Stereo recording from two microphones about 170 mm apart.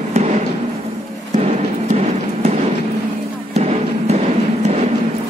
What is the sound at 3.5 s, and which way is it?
Music, 40° right (ahead or behind).